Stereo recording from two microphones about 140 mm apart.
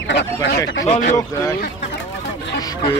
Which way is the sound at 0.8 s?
50° left (ahead or behind).